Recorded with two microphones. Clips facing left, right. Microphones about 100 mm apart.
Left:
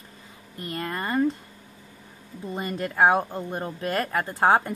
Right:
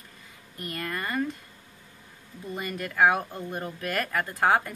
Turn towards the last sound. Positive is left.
turn(degrees=30)  # may be behind; listen again after turning